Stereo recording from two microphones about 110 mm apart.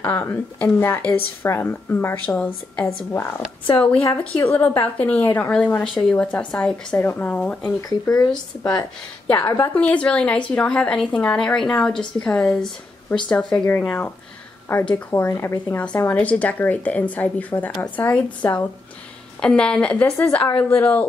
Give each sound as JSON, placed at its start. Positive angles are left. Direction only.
{"t": 0.0, "sound": "a woman's voice", "side_deg": 15}
{"t": 9.3, "sound": "speech", "side_deg": 30}
{"t": 9.8, "sound": "a woman's voice", "side_deg": 10}